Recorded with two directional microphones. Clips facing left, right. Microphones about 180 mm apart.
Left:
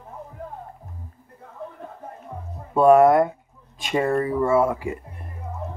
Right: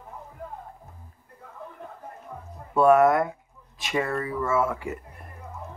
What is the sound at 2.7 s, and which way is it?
Speech, 25° left (ahead or behind).